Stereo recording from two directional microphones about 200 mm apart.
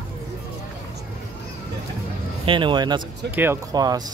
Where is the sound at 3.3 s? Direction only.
10° right (ahead or behind).